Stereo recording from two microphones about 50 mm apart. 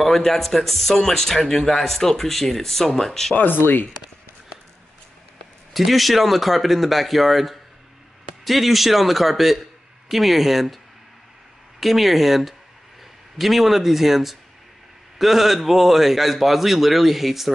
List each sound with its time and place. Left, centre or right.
0.0 s speech: centre
3.3 s speech: left
5.7 s a man's voice: centre
11.8 s speech: centre